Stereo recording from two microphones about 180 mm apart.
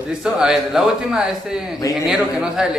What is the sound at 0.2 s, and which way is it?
A man's voice, 5° right (ahead or behind).